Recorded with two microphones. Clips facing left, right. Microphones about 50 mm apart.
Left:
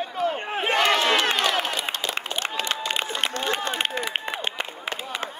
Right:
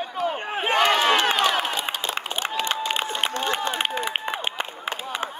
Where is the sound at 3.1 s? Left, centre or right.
Centre.